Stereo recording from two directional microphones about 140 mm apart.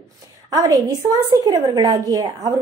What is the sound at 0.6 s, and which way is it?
A woman's voice, 25° right (ahead or behind).